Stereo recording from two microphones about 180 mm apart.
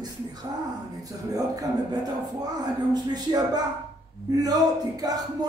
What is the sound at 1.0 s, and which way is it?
Speech, 20° right (ahead or behind).